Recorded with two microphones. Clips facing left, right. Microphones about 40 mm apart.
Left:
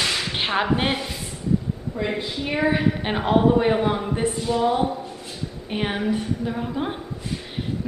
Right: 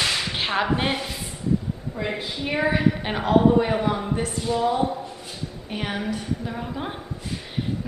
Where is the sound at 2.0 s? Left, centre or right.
Centre.